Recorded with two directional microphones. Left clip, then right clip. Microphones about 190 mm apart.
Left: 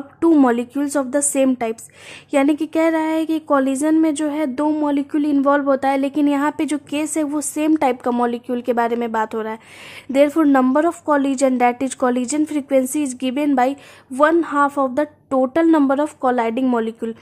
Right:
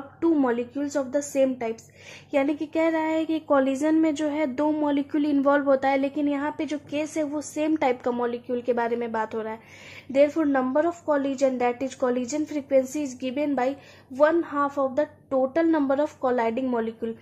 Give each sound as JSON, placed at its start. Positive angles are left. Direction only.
{"t": 0.2, "sound": "a woman's voice", "side_deg": 45}